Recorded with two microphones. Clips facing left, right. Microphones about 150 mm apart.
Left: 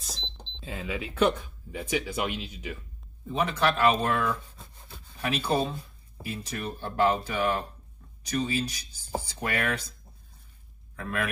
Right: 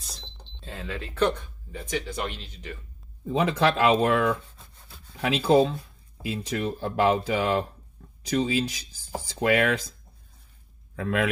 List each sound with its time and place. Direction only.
0.0 s speech: 5° left (ahead or behind)
3.3 s speech: 90° right
11.0 s speech: 90° right